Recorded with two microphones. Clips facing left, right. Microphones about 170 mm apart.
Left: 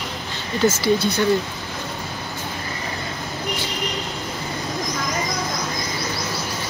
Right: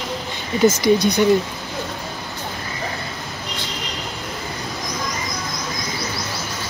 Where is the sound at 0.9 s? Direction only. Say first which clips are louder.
Right 3 dB; 15° right (ahead or behind).